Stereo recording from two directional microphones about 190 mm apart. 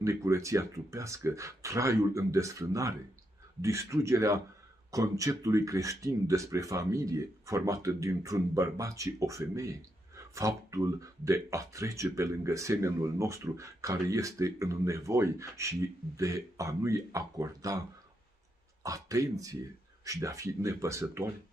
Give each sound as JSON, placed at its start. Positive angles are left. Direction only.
{"t": 0.0, "sound": "speech", "side_deg": -15}